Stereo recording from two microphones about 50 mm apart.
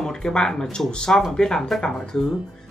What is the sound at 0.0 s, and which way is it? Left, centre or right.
Speech, centre.